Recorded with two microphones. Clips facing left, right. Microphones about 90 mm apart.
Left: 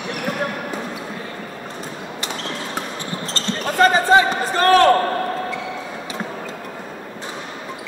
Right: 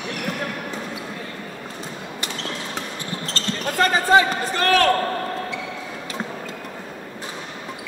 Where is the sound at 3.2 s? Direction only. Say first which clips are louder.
Left 1 dB; 25° left (ahead or behind).